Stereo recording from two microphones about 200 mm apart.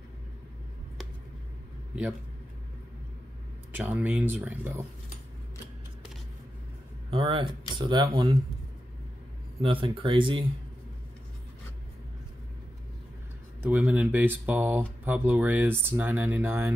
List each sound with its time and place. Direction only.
3.7 s speech: 10° right (ahead or behind)
7.1 s speech: 25° right (ahead or behind)
9.6 s speech: 25° right (ahead or behind)
13.7 s speech: 5° right (ahead or behind)